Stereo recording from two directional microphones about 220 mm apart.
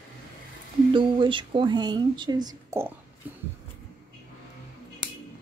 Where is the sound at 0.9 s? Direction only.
20° right (ahead or behind).